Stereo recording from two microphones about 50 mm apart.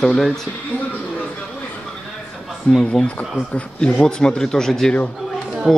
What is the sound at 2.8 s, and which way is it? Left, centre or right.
Speech, centre.